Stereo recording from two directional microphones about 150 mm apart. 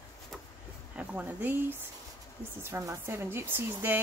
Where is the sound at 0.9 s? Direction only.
10° right (ahead or behind).